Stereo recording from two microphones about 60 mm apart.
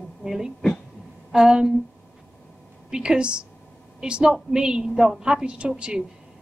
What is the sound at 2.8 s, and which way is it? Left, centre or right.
A woman's voice, centre.